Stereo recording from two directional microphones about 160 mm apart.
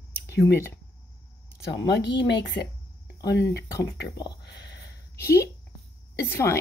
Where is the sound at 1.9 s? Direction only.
90° left.